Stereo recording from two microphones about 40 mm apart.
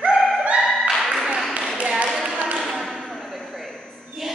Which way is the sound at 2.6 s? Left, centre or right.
Centre.